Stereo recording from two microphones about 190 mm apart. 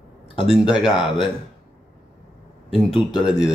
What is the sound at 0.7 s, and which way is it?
Speech, 5° right (ahead or behind).